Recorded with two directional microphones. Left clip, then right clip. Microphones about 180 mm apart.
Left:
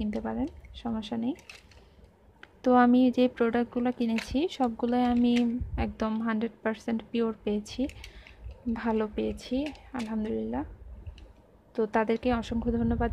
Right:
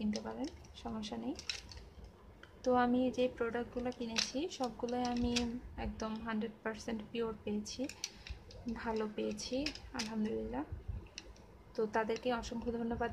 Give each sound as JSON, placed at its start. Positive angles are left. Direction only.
{"t": 0.0, "sound": "speech", "side_deg": 35}
{"t": 2.4, "sound": "a woman's voice", "side_deg": 40}
{"t": 11.7, "sound": "a woman's voice", "side_deg": 35}